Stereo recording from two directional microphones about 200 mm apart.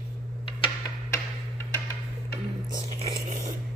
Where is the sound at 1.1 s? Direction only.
15° left (ahead or behind).